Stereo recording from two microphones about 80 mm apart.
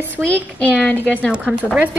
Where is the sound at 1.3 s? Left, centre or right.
Centre.